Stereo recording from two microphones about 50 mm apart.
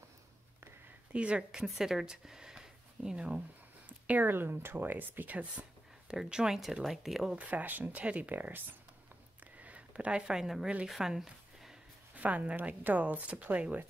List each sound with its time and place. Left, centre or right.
1.1 s speech: right
4.1 s speech: right
6.0 s speech: centre
7.3 s speech: right
9.6 s a sound: right
10.4 s speech: centre
12.2 s speech: right